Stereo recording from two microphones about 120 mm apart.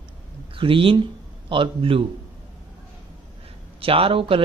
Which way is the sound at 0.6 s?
50° right (ahead or behind).